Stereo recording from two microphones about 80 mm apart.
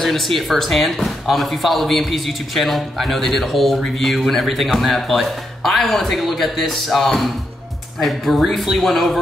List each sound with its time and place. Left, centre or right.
0.0 s speech: centre